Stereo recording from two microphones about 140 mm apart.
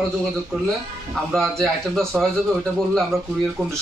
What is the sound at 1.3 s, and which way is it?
Speech, centre (ahead or behind).